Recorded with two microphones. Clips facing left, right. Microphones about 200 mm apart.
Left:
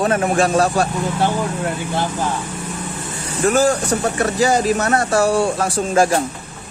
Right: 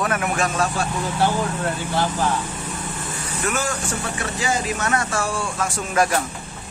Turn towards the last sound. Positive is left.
turn(degrees=25)  # may be behind; listen again after turning